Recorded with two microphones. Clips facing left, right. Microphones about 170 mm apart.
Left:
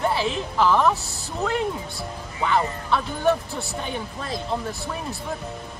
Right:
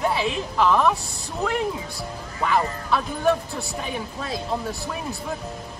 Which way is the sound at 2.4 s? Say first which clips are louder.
Even; centre (ahead or behind).